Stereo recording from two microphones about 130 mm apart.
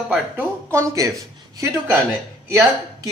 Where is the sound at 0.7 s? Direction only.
25° right (ahead or behind).